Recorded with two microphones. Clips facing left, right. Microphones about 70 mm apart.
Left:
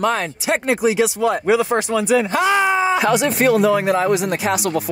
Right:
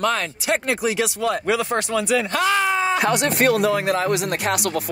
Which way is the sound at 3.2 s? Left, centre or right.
Right.